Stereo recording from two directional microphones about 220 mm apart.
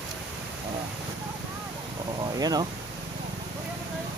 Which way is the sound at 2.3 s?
15° right (ahead or behind).